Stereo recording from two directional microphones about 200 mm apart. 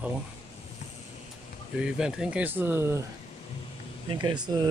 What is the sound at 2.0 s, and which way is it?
Speech, 5° right (ahead or behind).